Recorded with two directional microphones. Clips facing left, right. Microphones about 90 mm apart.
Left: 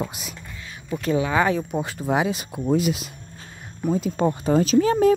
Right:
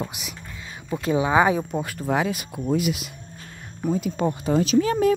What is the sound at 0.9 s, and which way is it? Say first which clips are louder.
Speech: right 2 dB; 20° right (ahead or behind).